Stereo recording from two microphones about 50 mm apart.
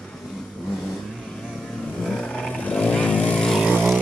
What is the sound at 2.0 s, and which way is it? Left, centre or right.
Vehicle, centre.